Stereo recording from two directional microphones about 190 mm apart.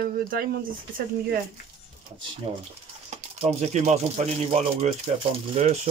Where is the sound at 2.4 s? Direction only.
30° right (ahead or behind).